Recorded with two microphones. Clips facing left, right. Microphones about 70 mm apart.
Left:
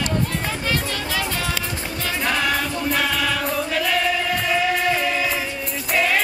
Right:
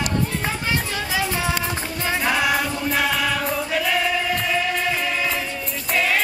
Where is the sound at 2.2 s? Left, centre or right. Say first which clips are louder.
Right 1 dB; centre.